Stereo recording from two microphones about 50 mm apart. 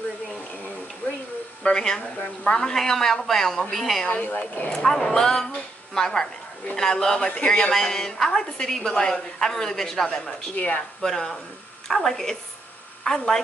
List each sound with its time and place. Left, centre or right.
1.6 s a woman's voice: centre
4.0 s speech: left
4.6 s a woman's voice: centre
7.2 s speech: left
7.7 s a woman's voice: centre
10.5 s speech: left
11.0 s a woman's voice: centre